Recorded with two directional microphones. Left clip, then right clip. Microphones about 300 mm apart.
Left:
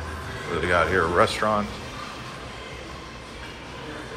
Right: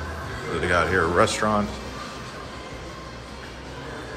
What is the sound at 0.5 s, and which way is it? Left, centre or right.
Speech, centre.